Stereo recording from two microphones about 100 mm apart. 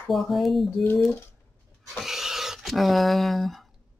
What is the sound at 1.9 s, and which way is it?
Speech, 5° right (ahead or behind).